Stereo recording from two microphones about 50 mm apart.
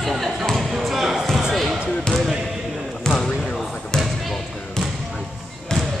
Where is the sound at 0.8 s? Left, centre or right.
Centre.